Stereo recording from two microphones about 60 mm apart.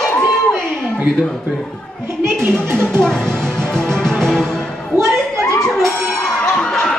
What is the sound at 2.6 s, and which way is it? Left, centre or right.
Speech, right.